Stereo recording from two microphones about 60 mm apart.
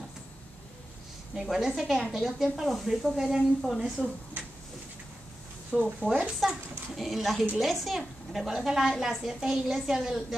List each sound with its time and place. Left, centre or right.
1.3 s a woman's voice: centre
5.7 s speech: centre
6.4 s a woman's voice: centre